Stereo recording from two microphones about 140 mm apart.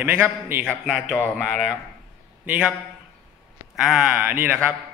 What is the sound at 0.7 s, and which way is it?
A man's voice, centre (ahead or behind).